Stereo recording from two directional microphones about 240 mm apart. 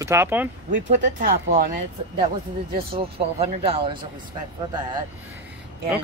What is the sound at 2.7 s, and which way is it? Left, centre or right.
Speech, right.